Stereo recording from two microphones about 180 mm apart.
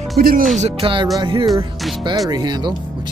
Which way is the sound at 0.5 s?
35° right (ahead or behind).